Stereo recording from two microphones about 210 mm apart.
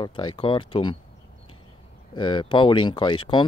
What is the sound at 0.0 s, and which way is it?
Speech, 20° left (ahead or behind).